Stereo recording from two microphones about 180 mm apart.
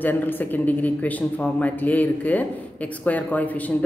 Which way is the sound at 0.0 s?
10° left (ahead or behind).